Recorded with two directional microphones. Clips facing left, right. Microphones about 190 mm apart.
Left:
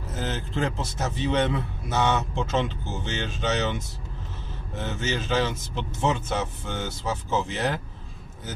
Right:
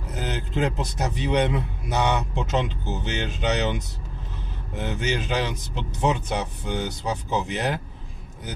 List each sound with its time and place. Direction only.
0.1 s a man's voice: 15° right (ahead or behind)